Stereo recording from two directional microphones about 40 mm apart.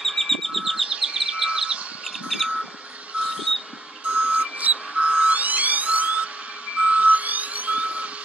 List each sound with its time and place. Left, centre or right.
0.0 s a sound: centre
0.8 s frog: right
2.2 s bird: centre
3.1 s vehicle: right
4.1 s reversing beeps: right
4.9 s car alarm: right
6.8 s music: right